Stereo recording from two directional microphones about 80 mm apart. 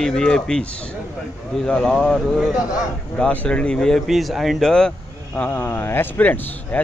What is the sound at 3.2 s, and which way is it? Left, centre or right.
A man's voice, centre.